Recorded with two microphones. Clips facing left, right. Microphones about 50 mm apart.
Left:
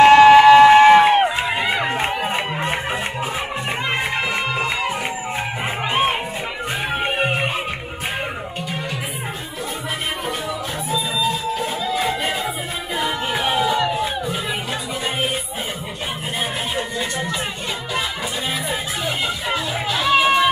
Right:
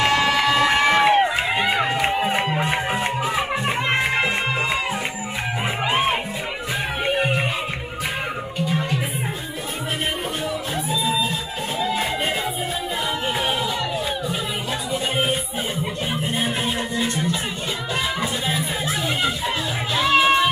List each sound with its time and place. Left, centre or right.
0.0 s a sound: left
1.1 s crowd: left
5.9 s music: left
13.5 s crowd: left